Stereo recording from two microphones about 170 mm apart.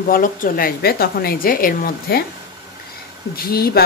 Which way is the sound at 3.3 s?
65° left (ahead or behind).